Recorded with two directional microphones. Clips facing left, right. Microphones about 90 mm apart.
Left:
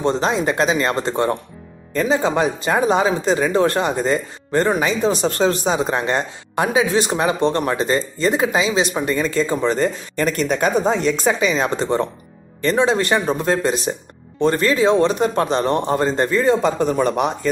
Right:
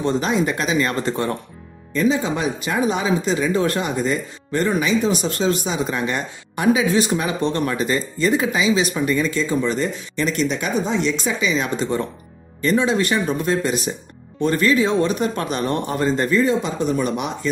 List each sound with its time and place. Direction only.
0.0 s speech: 35° left (ahead or behind)